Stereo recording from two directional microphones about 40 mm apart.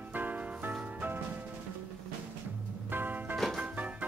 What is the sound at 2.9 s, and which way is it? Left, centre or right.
Music, right.